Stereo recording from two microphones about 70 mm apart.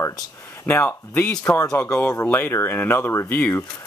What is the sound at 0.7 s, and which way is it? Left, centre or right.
Speech, left.